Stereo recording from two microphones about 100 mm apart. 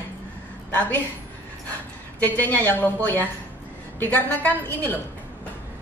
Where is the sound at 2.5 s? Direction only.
20° left (ahead or behind).